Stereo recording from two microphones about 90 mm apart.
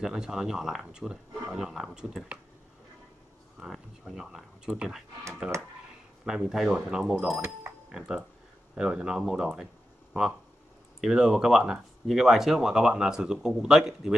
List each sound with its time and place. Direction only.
0.0 s speech: 5° right (ahead or behind)
3.5 s speech: 5° right (ahead or behind)
6.2 s speech: 5° right (ahead or behind)
11.0 s speech: 5° right (ahead or behind)